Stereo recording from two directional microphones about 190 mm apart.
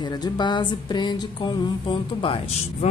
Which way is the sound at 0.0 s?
20° left (ahead or behind).